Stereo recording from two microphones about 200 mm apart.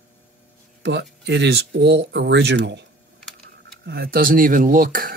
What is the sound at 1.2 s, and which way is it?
Speech, 60° right (ahead or behind).